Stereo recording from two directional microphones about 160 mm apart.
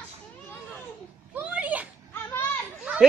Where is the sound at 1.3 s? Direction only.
10° right (ahead or behind).